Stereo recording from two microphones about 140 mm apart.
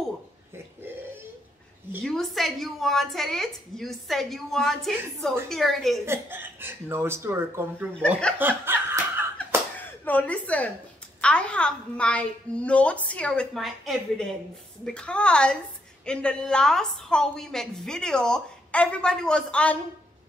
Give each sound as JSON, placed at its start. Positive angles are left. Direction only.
{"t": 2.0, "sound": "a woman's voice", "side_deg": 0}
{"t": 6.0, "sound": "speech", "side_deg": -15}
{"t": 7.9, "sound": "a woman's voice", "side_deg": 5}
{"t": 8.4, "sound": "laughter", "side_deg": -15}
{"t": 10.0, "sound": "a woman's voice", "side_deg": 10}